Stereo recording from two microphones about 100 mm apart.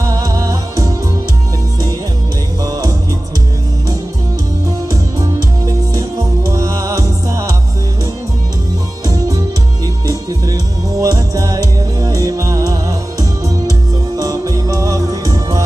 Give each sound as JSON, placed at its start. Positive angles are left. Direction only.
{"t": 0.0, "sound": "music", "side_deg": -35}
{"t": 2.6, "sound": "music", "side_deg": -40}
{"t": 5.2, "sound": "music", "side_deg": -35}
{"t": 10.0, "sound": "music", "side_deg": -35}